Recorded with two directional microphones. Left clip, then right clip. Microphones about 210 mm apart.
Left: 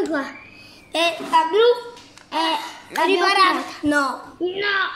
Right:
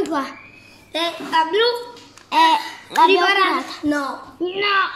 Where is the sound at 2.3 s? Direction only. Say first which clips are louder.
Right 7 dB; 25° right (ahead or behind).